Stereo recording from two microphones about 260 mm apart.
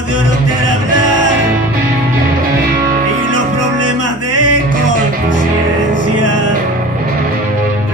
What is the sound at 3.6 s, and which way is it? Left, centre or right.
Music, right.